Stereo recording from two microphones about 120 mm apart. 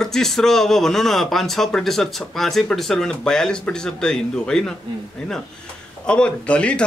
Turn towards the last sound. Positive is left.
turn(degrees=10)  # may be behind; listen again after turning